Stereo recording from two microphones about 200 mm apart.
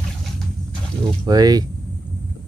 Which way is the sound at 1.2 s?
20° right (ahead or behind).